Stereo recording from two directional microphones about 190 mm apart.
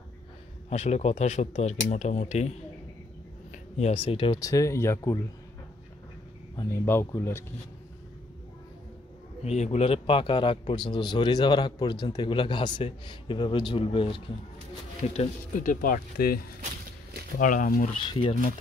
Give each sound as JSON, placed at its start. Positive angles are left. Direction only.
{"t": 0.7, "sound": "speech", "side_deg": 35}
{"t": 3.7, "sound": "a man's voice", "side_deg": 35}
{"t": 6.5, "sound": "speech", "side_deg": 15}
{"t": 9.4, "sound": "a man's voice", "side_deg": 35}
{"t": 15.1, "sound": "speech", "side_deg": 45}
{"t": 17.4, "sound": "speech", "side_deg": 45}
{"t": 18.0, "sound": "a man's voice", "side_deg": 25}